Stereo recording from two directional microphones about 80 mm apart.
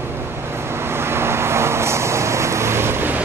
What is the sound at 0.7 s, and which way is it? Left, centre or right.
Vehicle, right.